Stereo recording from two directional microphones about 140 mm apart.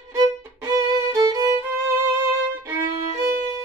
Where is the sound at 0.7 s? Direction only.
25° right (ahead or behind).